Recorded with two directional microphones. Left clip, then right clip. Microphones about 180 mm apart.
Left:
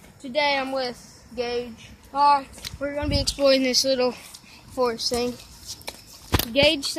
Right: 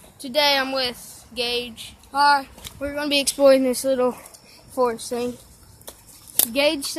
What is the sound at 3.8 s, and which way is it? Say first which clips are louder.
Speech: right 2 dB; 20° right (ahead or behind).